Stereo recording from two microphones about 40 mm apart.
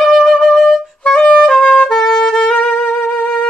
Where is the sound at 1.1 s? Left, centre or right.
Left.